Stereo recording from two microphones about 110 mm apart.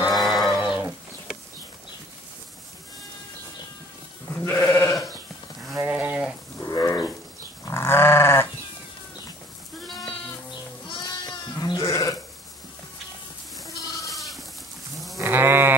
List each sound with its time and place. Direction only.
0.1 s livestock: centre (ahead or behind)
4.4 s goat: 20° left (ahead or behind)
5.8 s a sound: 15° right (ahead or behind)
6.6 s wild animals: 35° left (ahead or behind)
7.6 s goat: 20° left (ahead or behind)
9.8 s sheep: centre (ahead or behind)
11.1 s sheep: 35° left (ahead or behind)
13.7 s goat: 30° left (ahead or behind)
14.1 s goat: centre (ahead or behind)
15.1 s sheep: 20° right (ahead or behind)